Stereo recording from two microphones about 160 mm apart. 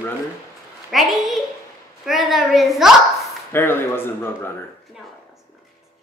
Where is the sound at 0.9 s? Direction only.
Centre (ahead or behind).